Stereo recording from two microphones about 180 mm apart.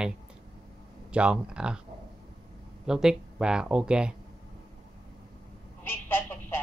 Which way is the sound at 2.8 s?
5° right (ahead or behind).